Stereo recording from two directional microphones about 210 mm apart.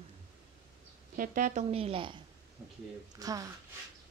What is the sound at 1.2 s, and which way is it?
A woman's voice, 35° right (ahead or behind).